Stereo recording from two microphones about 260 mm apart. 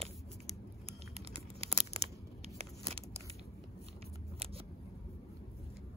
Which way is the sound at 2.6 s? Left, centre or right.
Right.